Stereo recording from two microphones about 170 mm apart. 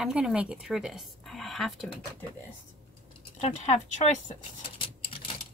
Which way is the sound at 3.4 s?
40° left (ahead or behind).